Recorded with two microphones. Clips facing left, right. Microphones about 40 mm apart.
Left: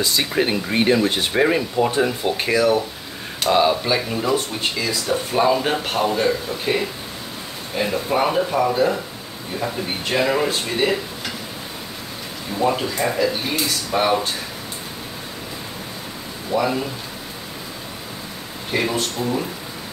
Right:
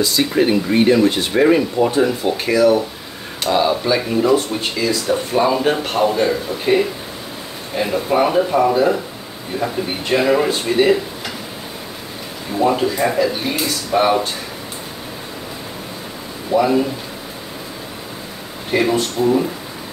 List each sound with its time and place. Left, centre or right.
0.2 s speech: centre
2.3 s speech: left
4.1 s speech: centre
12.5 s speech: centre
16.5 s speech: centre
18.7 s speech: centre